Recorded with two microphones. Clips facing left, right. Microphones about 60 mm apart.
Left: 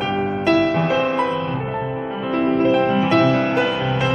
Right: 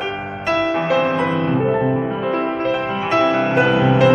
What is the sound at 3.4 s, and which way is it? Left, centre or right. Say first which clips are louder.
Music: right 3 dB; centre.